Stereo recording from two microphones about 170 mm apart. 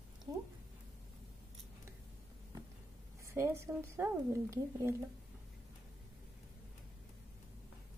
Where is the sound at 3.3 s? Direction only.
15° right (ahead or behind).